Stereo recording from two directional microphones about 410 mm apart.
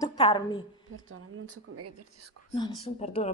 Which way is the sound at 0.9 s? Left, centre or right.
Right.